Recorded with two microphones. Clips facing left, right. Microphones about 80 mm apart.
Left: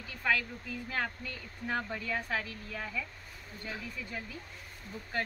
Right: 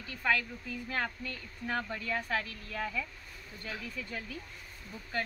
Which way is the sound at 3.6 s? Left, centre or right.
Centre.